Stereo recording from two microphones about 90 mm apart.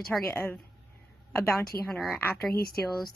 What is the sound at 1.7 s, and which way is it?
Speech, 25° left (ahead or behind).